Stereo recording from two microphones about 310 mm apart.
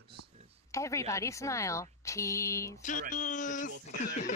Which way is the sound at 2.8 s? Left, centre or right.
Left.